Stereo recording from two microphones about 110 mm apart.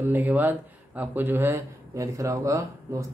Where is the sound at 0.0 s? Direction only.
15° right (ahead or behind).